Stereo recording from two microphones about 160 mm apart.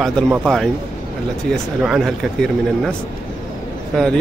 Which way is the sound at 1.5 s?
Centre (ahead or behind).